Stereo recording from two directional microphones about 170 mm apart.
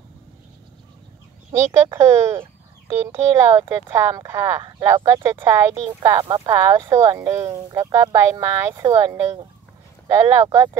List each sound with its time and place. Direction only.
1.5 s speech: 15° right (ahead or behind)
10.3 s speech: 20° right (ahead or behind)